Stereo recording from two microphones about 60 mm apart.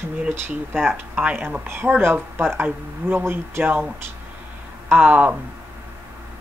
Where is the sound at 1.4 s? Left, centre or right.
Right.